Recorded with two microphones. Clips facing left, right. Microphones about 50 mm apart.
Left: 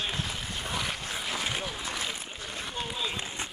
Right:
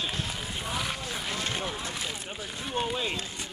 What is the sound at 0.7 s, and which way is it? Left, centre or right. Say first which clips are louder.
Vehicle: even; centre.